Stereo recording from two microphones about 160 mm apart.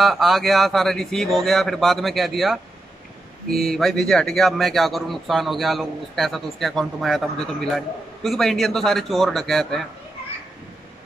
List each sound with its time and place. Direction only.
0.0 s a man's voice: centre (ahead or behind)